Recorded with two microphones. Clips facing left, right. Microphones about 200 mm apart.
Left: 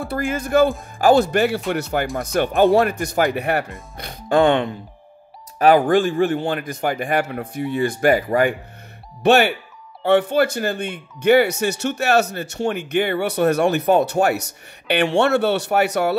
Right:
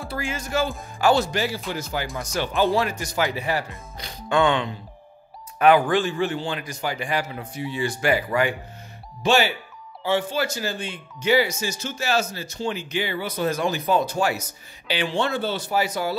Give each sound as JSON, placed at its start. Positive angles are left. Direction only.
{"t": 0.0, "sound": "speech", "side_deg": 55}
{"t": 2.1, "sound": "speech", "side_deg": 55}
{"t": 3.9, "sound": "music", "side_deg": 55}
{"t": 5.6, "sound": "speech", "side_deg": 45}
{"t": 9.2, "sound": "speech", "side_deg": 60}